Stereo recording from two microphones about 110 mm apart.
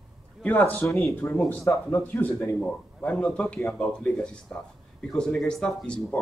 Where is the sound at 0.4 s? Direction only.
15° left (ahead or behind).